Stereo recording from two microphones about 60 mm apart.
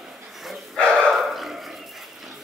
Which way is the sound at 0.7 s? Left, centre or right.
Centre.